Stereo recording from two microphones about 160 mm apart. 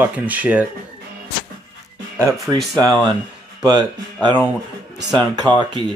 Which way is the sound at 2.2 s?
15° right (ahead or behind).